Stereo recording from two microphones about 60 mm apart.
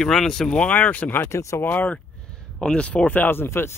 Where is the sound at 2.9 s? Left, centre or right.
Left.